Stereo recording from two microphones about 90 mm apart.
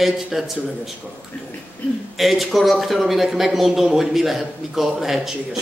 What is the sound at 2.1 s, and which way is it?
Speech, centre (ahead or behind).